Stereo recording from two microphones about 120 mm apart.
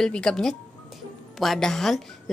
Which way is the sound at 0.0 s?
5° left (ahead or behind).